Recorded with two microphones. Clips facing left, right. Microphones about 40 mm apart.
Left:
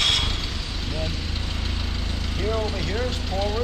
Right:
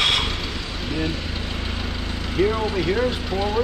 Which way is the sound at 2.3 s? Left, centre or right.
Centre.